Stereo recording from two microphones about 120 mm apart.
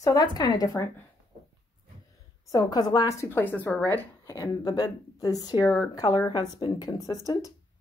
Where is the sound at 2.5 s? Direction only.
30° left (ahead or behind).